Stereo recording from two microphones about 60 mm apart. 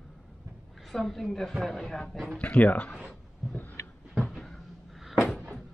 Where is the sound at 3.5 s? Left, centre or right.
Left.